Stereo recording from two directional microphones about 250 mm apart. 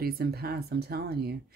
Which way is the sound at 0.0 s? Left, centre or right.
Right.